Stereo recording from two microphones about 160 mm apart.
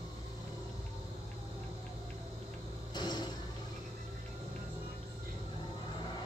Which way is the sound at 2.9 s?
25° left (ahead or behind).